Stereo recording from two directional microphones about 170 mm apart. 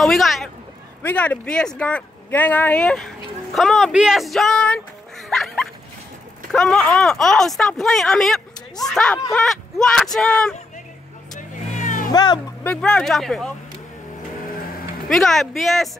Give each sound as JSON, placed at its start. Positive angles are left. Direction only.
{"t": 0.0, "sound": "a sound", "side_deg": 0}
{"t": 1.0, "sound": "speech", "side_deg": 10}
{"t": 11.3, "sound": "vehicle", "side_deg": 50}
{"t": 12.1, "sound": "speech", "side_deg": 25}
{"t": 12.6, "sound": "speech", "side_deg": 5}
{"t": 15.0, "sound": "speech", "side_deg": 0}